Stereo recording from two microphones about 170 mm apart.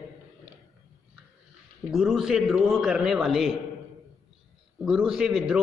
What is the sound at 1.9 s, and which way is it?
A man's voice, 5° right (ahead or behind).